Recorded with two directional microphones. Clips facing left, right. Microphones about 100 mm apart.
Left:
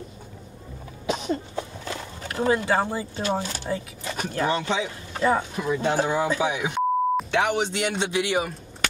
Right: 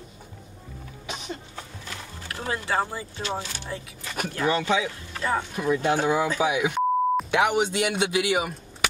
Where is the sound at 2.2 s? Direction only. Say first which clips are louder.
Left 7 dB; 25° left (ahead or behind).